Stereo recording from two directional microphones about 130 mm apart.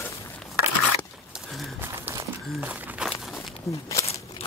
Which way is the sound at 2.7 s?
10° right (ahead or behind).